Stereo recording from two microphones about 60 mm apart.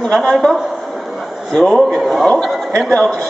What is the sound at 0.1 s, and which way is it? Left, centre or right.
Speech, centre.